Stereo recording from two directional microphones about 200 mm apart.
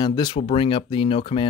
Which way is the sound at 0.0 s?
20° left (ahead or behind).